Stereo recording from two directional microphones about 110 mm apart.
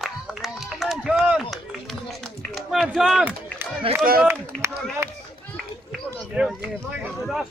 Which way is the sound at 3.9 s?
60° right (ahead or behind).